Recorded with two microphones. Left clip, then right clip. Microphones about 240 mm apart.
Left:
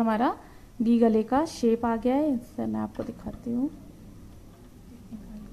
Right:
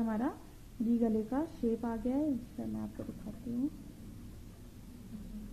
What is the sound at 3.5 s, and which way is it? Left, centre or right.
Speech, left.